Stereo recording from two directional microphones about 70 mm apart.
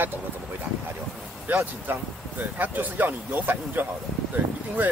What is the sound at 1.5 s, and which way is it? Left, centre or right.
Speech, right.